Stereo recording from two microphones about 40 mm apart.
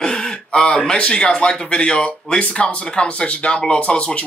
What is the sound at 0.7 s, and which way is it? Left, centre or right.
Speech, left.